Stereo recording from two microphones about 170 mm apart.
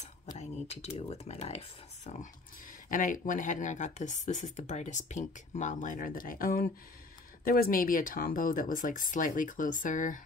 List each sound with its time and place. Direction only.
0.4 s speech: 40° left (ahead or behind)
2.9 s speech: 50° left (ahead or behind)